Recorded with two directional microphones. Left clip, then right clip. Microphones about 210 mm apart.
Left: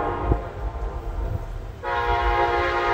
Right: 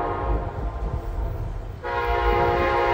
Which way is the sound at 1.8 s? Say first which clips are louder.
Left 1 dB; 20° left (ahead or behind).